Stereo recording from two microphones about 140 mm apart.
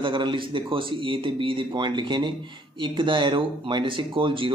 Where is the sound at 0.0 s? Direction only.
35° right (ahead or behind).